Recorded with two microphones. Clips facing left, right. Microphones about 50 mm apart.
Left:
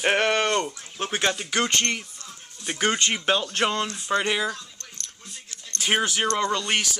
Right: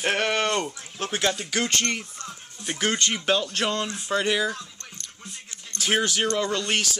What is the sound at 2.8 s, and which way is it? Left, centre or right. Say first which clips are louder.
Speech: left 2 dB; centre.